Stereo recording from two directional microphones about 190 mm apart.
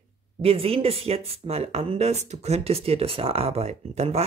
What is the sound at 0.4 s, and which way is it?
Speech, 30° right (ahead or behind).